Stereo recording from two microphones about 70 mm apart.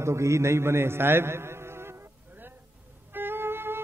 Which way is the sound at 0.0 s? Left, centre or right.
Right.